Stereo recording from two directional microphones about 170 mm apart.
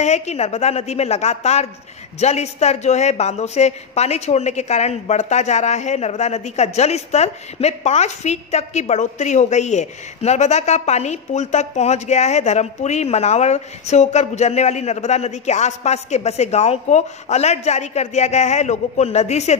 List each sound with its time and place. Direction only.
0.0 s speech: 40° left (ahead or behind)